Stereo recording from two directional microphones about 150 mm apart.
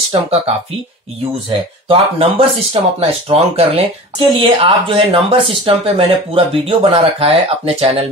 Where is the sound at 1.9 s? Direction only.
35° right (ahead or behind).